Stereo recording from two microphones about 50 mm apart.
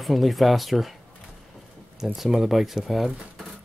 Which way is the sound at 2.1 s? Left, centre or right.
Centre.